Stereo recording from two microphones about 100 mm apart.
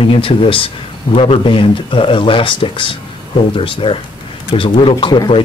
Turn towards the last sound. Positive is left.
turn(degrees=50)  # may be behind; listen again after turning